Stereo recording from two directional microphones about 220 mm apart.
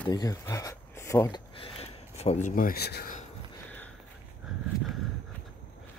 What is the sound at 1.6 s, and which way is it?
Speech, 25° left (ahead or behind).